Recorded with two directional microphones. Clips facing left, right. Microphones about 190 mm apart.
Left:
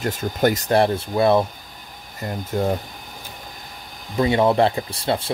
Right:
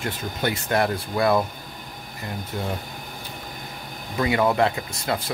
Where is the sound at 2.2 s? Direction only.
45° left (ahead or behind).